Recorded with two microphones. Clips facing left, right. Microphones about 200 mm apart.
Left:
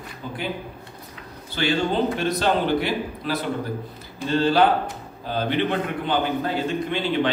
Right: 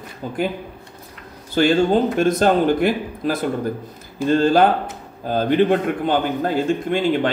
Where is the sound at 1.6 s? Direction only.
45° right (ahead or behind).